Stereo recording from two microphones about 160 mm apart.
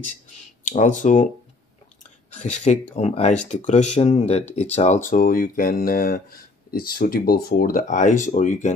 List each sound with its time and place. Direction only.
0.7 s speech: 50° left (ahead or behind)
2.3 s speech: 45° left (ahead or behind)